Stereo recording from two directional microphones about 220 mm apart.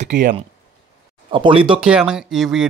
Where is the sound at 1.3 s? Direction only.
25° right (ahead or behind).